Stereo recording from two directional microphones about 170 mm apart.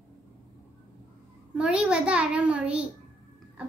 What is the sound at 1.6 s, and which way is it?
A child's voice, 5° right (ahead or behind).